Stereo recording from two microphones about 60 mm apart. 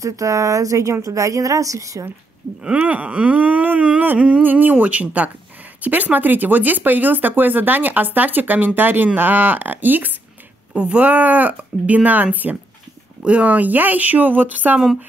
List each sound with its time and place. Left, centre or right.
0.0 s a woman's voice: right
2.6 s speech: right
10.7 s speech: centre